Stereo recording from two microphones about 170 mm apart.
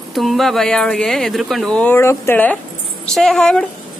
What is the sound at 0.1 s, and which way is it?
A woman's voice, centre (ahead or behind).